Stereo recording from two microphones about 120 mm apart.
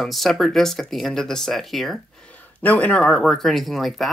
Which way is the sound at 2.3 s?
10° left (ahead or behind).